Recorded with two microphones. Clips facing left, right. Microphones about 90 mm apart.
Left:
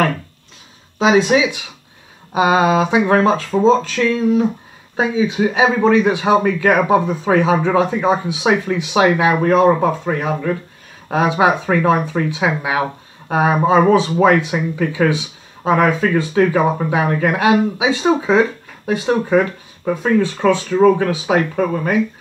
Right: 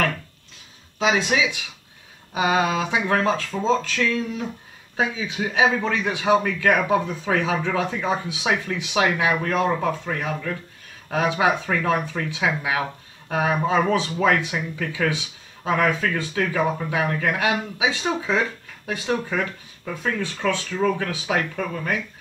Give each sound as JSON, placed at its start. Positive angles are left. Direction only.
{"t": 0.9, "sound": "speech", "side_deg": 25}
{"t": 2.6, "sound": "speech", "side_deg": 25}
{"t": 7.7, "sound": "speech", "side_deg": 10}
{"t": 18.1, "sound": "speech", "side_deg": 25}
{"t": 19.1, "sound": "speech", "side_deg": 30}